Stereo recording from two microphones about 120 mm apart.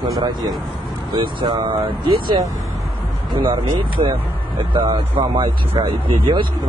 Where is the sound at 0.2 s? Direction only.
35° right (ahead or behind).